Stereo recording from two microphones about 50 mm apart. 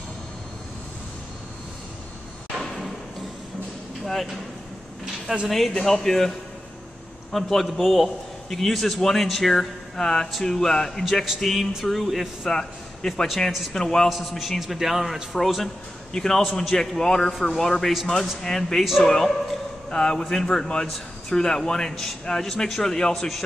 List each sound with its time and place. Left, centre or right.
2.6 s a sound: centre
4.0 s a man's voice: centre
5.5 s a man's voice: centre
7.3 s a man's voice: centre